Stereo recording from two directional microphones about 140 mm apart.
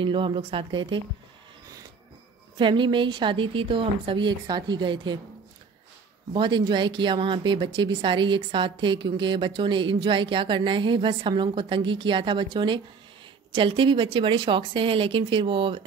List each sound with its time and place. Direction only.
0.0 s speech: 40° right (ahead or behind)
2.5 s speech: 35° right (ahead or behind)
6.3 s speech: 35° right (ahead or behind)